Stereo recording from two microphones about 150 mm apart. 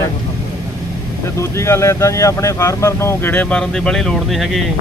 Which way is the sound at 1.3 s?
20° left (ahead or behind).